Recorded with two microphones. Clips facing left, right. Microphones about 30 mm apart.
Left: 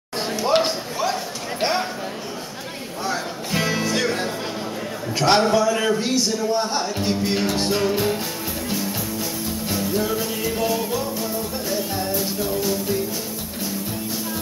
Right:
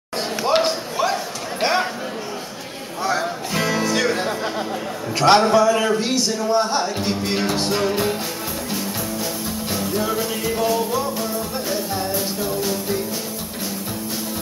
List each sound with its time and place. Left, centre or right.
0.5 s a sound: centre
3.5 s music: centre
5.2 s a man's voice: centre
5.9 s speech: centre
9.7 s music: centre
11.0 s music: centre